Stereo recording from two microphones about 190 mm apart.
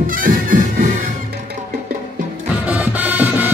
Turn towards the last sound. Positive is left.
turn(degrees=-10)  # may be behind; listen again after turning